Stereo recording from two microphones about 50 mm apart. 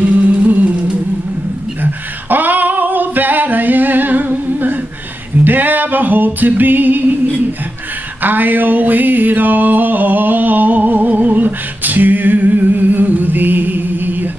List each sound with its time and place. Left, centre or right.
0.0 s music: right
1.8 s female singing: right
5.4 s singing: right
8.2 s a sound: right